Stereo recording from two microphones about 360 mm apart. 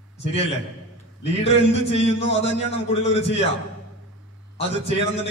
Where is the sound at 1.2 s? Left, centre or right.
Centre.